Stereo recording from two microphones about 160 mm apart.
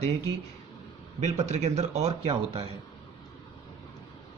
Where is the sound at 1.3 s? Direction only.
45° right (ahead or behind).